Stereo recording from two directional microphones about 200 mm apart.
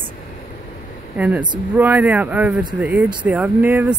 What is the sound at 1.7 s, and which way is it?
Speech, 10° right (ahead or behind).